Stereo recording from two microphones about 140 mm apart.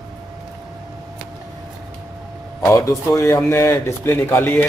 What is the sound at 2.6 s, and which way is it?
Speech, 20° left (ahead or behind).